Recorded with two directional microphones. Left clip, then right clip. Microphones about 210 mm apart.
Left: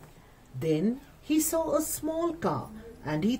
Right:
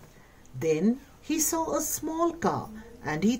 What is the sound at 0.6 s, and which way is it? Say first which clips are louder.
A woman's voice: right 2 dB; 40° right (ahead or behind).